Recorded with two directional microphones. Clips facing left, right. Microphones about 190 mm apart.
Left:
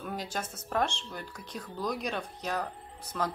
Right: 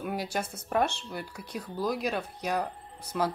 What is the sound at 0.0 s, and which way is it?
Speech, 10° right (ahead or behind).